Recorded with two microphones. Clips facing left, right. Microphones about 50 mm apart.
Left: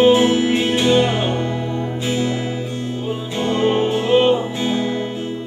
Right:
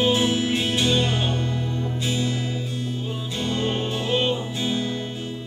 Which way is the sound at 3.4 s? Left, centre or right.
Left.